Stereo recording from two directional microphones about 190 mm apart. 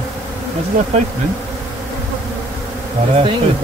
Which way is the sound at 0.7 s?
45° right (ahead or behind).